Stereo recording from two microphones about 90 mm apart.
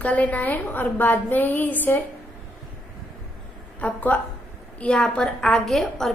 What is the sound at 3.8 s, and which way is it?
A woman's voice, 20° left (ahead or behind).